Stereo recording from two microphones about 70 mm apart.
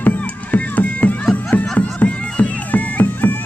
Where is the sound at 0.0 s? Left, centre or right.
Left.